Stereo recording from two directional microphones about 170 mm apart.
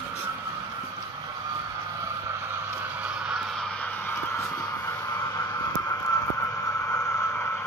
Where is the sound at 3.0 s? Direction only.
5° right (ahead or behind).